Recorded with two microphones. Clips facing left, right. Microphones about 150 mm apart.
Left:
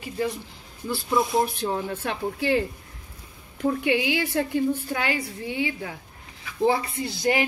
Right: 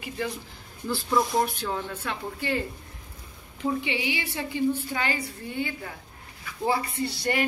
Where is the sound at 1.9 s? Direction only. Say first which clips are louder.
Left 5 dB; 70° left (ahead or behind).